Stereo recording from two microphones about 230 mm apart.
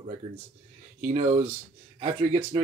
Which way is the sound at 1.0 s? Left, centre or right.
Right.